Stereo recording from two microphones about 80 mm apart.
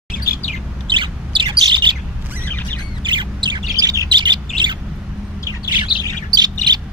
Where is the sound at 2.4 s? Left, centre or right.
Left.